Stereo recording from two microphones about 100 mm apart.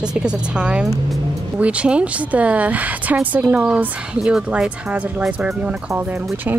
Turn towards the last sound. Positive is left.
turn(degrees=-20)  # may be behind; listen again after turning